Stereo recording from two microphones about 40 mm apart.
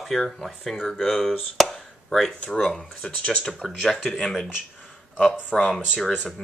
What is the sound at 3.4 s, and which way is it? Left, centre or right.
Speech, centre.